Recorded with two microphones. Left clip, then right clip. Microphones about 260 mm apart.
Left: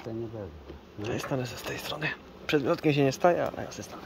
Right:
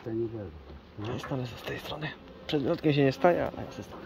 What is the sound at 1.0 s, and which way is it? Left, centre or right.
Speech, centre.